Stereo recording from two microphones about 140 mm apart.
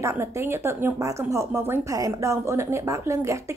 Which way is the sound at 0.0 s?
20° right (ahead or behind).